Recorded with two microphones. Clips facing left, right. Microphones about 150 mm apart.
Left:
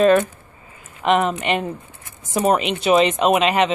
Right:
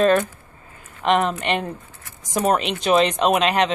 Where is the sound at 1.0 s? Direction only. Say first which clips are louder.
Left 1 dB; 5° left (ahead or behind).